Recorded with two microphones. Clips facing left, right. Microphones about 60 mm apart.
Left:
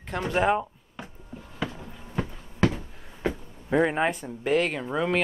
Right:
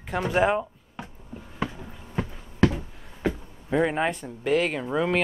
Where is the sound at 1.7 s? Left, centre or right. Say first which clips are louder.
Even; centre.